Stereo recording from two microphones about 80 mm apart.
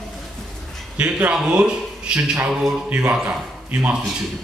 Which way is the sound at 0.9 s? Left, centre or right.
Centre.